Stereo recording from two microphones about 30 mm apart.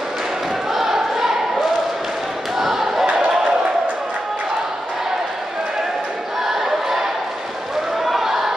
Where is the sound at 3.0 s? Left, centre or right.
Right.